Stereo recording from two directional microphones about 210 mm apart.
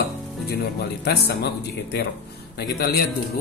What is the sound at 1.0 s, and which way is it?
Speech, 50° left (ahead or behind).